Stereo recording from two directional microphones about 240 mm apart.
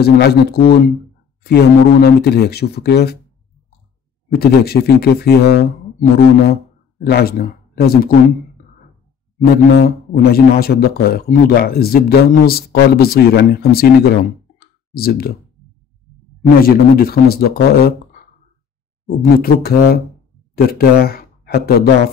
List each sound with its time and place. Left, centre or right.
0.0 s speech: left
4.3 s speech: left
9.8 s speech: left
16.6 s speech: left
19.0 s speech: left